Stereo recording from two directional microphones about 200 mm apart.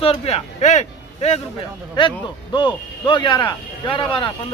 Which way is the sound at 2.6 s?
25° left (ahead or behind).